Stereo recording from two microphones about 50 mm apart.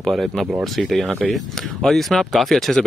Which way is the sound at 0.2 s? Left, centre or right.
Centre.